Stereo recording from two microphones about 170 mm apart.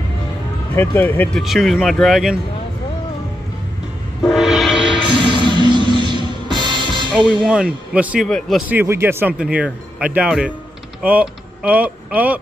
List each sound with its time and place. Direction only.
0.7 s speech: 10° left (ahead or behind)
1.4 s speech: centre (ahead or behind)
4.3 s train: centre (ahead or behind)
5.1 s music: 30° right (ahead or behind)
7.2 s speech: centre (ahead or behind)
8.3 s speech: 5° left (ahead or behind)
8.6 s speech: 10° right (ahead or behind)